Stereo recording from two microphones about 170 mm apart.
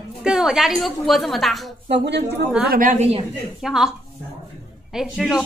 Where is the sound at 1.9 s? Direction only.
90° right.